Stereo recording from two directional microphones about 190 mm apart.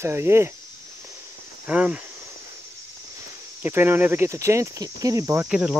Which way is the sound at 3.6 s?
10° right (ahead or behind).